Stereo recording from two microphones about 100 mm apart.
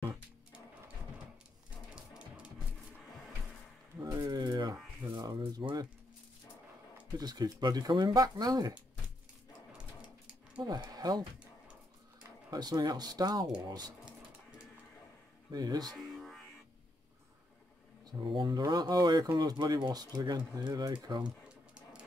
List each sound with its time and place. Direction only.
4.3 s a sound: 45° right (ahead or behind)
7.2 s speech: 40° right (ahead or behind)
10.6 s speech: 40° right (ahead or behind)
12.4 s speech: 40° right (ahead or behind)
15.5 s speech: 40° right (ahead or behind)
16.0 s music: centre (ahead or behind)
18.0 s speech: 50° right (ahead or behind)